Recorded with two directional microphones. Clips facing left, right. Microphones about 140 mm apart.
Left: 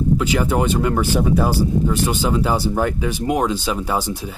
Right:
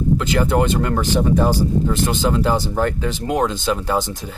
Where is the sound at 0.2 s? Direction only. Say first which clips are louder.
Right 1 dB; 10° left (ahead or behind).